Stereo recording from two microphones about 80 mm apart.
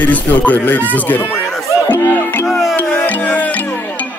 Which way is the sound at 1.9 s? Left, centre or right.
Left.